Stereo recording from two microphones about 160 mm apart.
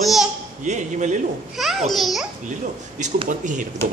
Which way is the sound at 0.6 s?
50° right (ahead or behind).